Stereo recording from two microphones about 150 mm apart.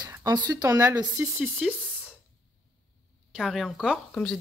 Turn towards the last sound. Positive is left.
turn(degrees=5)  # may be behind; listen again after turning